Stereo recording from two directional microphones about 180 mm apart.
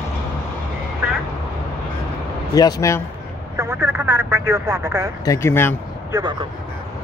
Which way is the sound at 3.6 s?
10° right (ahead or behind).